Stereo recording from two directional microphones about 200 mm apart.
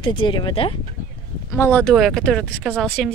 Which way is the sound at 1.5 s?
10° left (ahead or behind).